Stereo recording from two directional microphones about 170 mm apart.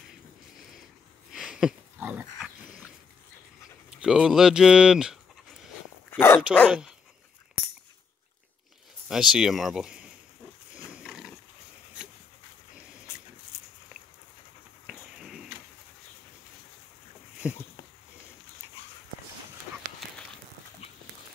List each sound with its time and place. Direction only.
1.3 s dog: 5° right (ahead or behind)
4.0 s speech: 5° right (ahead or behind)
6.1 s speech: 15° left (ahead or behind)
6.7 s speech: 5° right (ahead or behind)
9.1 s speech: centre (ahead or behind)
11.1 s a sound: 5° right (ahead or behind)
13.5 s dog: 15° left (ahead or behind)
14.9 s a sound: 5° right (ahead or behind)
17.4 s a sound: 5° right (ahead or behind)